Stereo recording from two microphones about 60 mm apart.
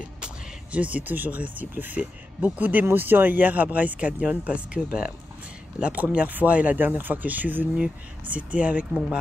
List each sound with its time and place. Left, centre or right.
0.2 s speech: right